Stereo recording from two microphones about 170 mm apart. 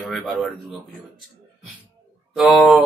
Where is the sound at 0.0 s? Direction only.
Centre (ahead or behind).